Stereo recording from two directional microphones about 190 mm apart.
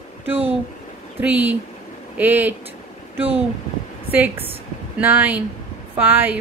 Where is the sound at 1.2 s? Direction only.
10° right (ahead or behind).